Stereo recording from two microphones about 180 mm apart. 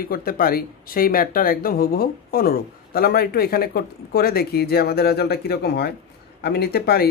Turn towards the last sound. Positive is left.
turn(degrees=60)  # may be behind; listen again after turning